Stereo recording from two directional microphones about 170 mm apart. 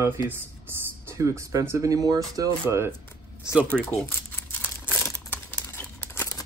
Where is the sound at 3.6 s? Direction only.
5° left (ahead or behind).